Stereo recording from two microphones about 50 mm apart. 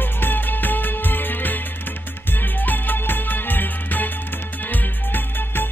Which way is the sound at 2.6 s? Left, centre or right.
Left.